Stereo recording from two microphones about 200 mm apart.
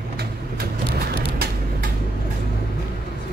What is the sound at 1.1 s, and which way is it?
Vehicle, 50° right (ahead or behind).